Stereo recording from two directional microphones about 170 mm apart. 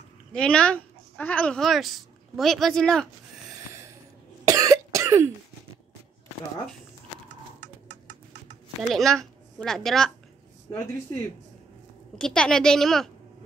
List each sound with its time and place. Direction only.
0.3 s a woman's voice: 5° left (ahead or behind)
4.5 s cough: 20° right (ahead or behind)
8.8 s speech: centre (ahead or behind)
12.2 s a woman's voice: 5° left (ahead or behind)